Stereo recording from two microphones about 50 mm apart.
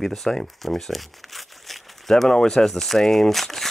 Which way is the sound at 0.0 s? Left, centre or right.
Centre.